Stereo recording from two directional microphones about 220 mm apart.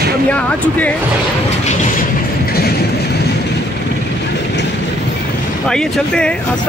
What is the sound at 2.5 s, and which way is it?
Train, 45° left (ahead or behind).